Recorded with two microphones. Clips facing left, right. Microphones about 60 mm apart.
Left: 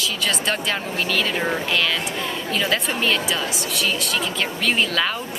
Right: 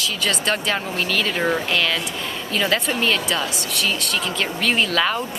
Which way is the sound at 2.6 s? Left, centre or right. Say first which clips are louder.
Right 3 dB; centre.